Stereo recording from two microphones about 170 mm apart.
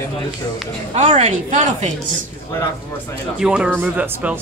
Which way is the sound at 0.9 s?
40° right (ahead or behind).